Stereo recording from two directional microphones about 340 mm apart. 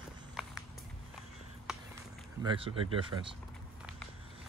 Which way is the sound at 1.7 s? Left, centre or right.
Centre.